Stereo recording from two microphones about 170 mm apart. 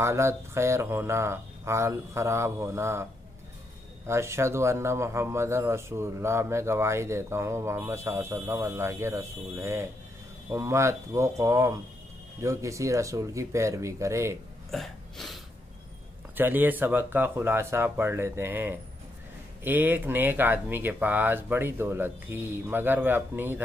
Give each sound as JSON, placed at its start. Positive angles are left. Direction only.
{"t": 0.0, "sound": "speech", "side_deg": -15}
{"t": 4.1, "sound": "speech", "side_deg": -15}
{"t": 14.7, "sound": "a sound", "side_deg": 0}
{"t": 16.3, "sound": "speech", "side_deg": -10}